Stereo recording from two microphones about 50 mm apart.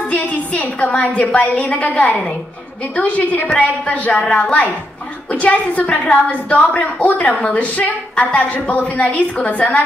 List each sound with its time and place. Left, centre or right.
0.1 s a sound: left
0.8 s a woman's voice: left
2.0 s a woman's voice: centre